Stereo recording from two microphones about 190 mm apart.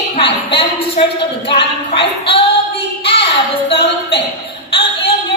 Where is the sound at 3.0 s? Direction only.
30° left (ahead or behind).